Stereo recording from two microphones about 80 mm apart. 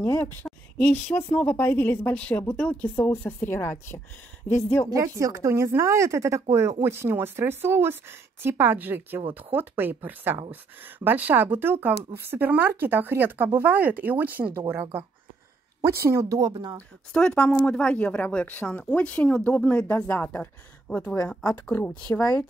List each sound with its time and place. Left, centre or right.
0.0 s speech: left
0.5 s a woman's voice: centre; by 4.9 s left
4.9 s speech: right
17.3 s speech: centre